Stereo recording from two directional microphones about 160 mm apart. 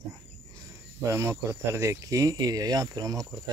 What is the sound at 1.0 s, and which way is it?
Speech, 15° right (ahead or behind).